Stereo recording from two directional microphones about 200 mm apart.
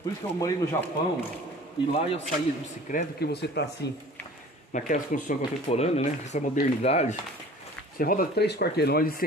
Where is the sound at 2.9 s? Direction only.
55° left (ahead or behind).